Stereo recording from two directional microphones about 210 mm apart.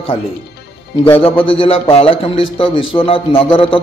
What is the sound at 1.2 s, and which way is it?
A man's voice, 25° left (ahead or behind).